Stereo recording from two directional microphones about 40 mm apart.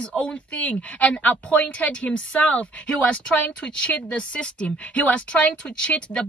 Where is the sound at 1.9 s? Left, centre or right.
Left.